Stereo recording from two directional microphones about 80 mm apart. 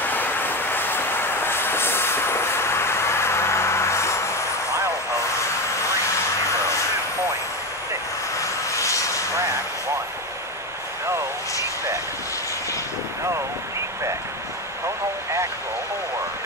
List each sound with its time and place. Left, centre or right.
0.0 s vehicle: left
8.7 s vehicle: left